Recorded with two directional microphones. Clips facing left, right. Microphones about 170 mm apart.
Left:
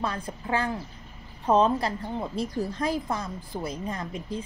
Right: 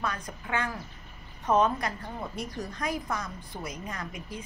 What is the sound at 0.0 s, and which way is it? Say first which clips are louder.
A woman's voice: left 3 dB; 30° left (ahead or behind).